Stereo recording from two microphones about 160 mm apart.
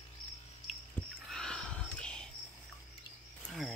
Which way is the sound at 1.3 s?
5° left (ahead or behind).